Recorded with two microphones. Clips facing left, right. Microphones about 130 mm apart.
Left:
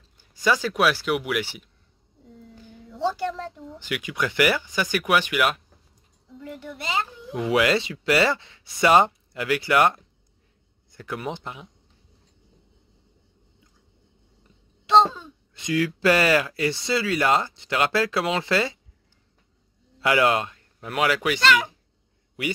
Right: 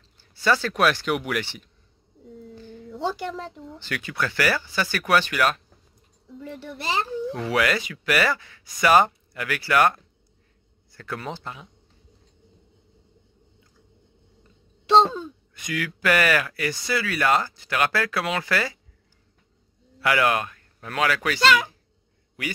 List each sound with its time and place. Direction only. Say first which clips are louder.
0.2 s speech: even; 15° left (ahead or behind)
3.1 s speech: left 3 dB; 5° right (ahead or behind)
3.7 s speech: left 1 dB; 15° left (ahead or behind)
6.4 s speech: even; 30° right (ahead or behind)
7.3 s speech: left 4 dB; 20° left (ahead or behind)
15.5 s speech: left 7 dB; 25° left (ahead or behind)
20.0 s speech: left 1 dB; 25° left (ahead or behind)